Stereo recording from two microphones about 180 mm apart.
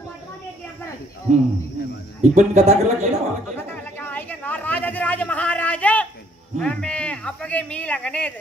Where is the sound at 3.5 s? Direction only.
10° left (ahead or behind).